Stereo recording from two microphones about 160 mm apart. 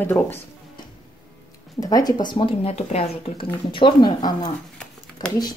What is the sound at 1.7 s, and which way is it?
Speech, 20° left (ahead or behind).